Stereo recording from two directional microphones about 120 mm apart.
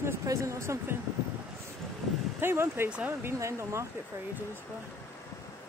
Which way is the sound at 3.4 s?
25° right (ahead or behind).